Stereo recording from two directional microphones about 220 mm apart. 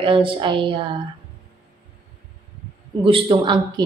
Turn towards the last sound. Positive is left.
turn(degrees=-20)  # may be behind; listen again after turning